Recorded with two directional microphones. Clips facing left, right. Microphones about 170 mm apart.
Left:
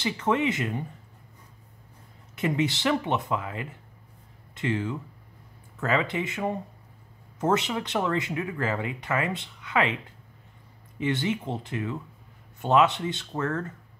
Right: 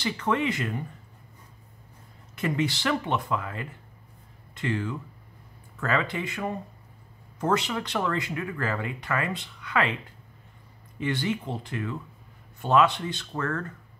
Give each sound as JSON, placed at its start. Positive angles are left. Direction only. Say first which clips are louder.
{"t": 0.0, "sound": "speech", "louder": "left 1 dB", "side_deg": 20}
{"t": 2.3, "sound": "speech", "louder": "left 1 dB", "side_deg": 20}
{"t": 11.0, "sound": "speech", "louder": "left 1 dB", "side_deg": 20}